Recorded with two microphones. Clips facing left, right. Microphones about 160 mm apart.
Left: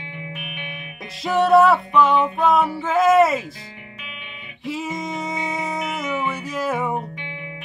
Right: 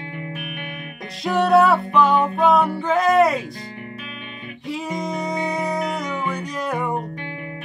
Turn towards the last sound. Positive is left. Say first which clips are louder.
# left 1 dB
turn(degrees=5)  # may be behind; listen again after turning